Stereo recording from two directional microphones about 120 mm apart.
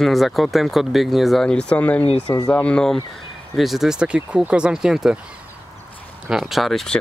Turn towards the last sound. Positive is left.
turn(degrees=0)  # may be behind; listen again after turning